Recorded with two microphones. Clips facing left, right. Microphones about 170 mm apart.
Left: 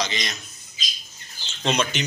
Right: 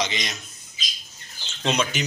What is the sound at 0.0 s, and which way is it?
Speech, 15° right (ahead or behind).